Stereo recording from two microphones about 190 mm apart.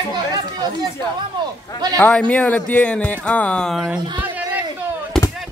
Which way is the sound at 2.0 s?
10° left (ahead or behind).